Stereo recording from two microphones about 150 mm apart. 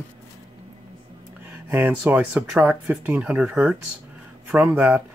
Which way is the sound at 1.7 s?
15° right (ahead or behind).